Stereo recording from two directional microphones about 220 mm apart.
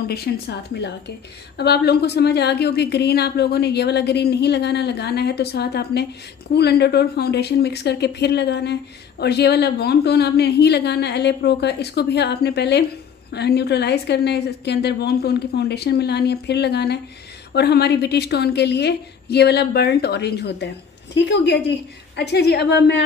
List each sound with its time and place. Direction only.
0.1 s a woman's voice: 45° left (ahead or behind)